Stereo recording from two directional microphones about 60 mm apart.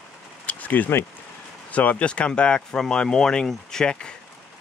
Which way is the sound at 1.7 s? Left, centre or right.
Left.